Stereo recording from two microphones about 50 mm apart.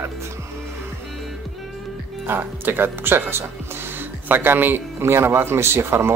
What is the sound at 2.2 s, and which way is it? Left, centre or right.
Speech, right.